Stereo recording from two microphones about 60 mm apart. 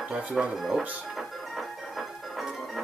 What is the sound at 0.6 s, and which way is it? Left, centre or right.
Music, centre.